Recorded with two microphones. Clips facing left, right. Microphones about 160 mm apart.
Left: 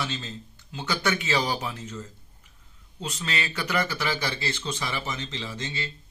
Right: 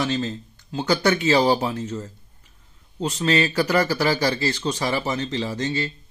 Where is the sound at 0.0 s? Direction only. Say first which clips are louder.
Right 9 dB; 40° right (ahead or behind).